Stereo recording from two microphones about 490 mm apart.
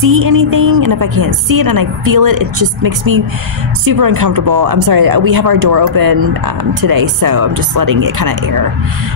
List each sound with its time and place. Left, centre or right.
0.2 s a woman's voice: right
0.6 s speech: right
0.8 s a woman's voice: right
3.9 s a woman's voice: right